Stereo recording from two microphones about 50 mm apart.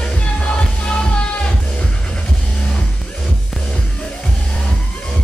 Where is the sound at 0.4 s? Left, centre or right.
Left.